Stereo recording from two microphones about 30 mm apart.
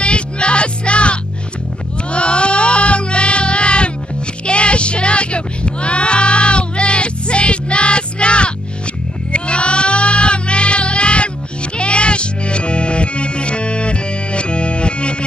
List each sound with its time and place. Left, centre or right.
0.0 s music: left
9.3 s sheep: left
11.8 s music: left